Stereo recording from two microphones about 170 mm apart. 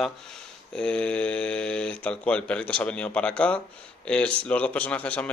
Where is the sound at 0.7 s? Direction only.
5° left (ahead or behind).